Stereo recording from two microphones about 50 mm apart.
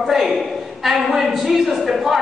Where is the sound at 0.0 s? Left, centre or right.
Centre.